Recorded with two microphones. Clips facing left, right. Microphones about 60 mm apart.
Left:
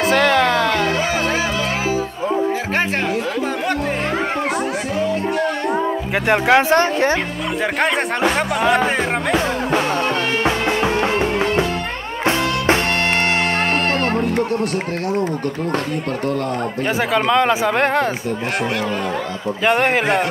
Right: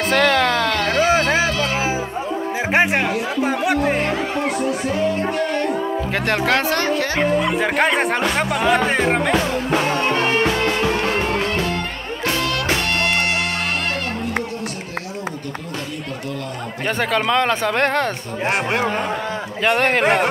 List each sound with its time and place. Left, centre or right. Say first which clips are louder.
0.1 s music: even; centre
1.0 s music: right 3 dB; right
2.7 s music: right 2 dB; centre
6.2 s a woman's voice: left 6 dB; centre
7.5 s speech: right 1 dB; centre
9.9 s music: even; centre
10.4 s music: left 1 dB; left
16.8 s speech: left 1 dB; centre
19.6 s speech: left 1 dB; centre